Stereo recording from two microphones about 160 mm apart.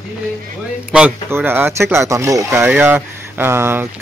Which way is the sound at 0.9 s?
10° right (ahead or behind).